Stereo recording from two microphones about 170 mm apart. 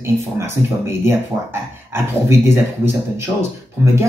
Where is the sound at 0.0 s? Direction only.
15° right (ahead or behind).